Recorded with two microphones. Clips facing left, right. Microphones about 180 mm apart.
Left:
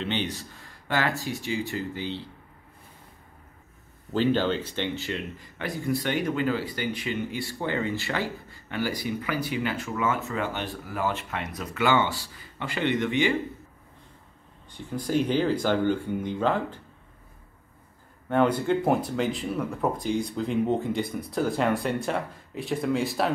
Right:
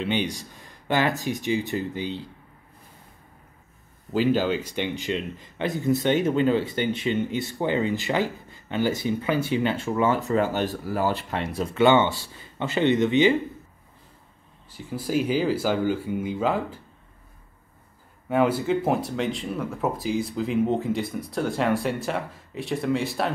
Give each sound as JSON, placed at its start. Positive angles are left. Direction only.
{"t": 0.0, "sound": "speech", "side_deg": -10}
{"t": 4.1, "sound": "speech", "side_deg": -5}
{"t": 14.7, "sound": "speech", "side_deg": -5}
{"t": 18.3, "sound": "speech", "side_deg": -5}